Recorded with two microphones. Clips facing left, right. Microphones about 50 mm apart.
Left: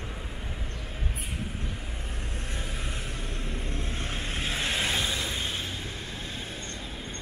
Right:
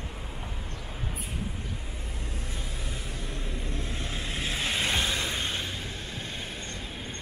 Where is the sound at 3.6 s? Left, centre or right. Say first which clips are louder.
Even; left.